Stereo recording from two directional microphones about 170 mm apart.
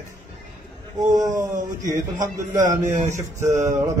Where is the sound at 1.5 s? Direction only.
50° right (ahead or behind).